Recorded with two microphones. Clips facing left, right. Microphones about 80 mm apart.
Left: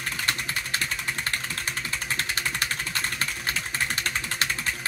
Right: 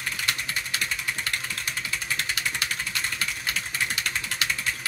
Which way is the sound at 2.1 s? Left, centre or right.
Left.